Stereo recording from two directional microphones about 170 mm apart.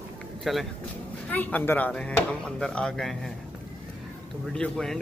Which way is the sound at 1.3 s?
10° left (ahead or behind).